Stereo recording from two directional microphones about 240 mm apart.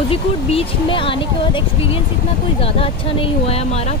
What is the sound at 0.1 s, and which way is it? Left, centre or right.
Speech, left.